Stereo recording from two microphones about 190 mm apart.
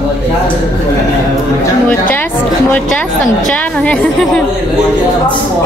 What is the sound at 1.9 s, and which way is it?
A woman's voice, 10° left (ahead or behind).